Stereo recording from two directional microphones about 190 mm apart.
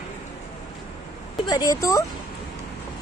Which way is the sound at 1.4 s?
20° left (ahead or behind).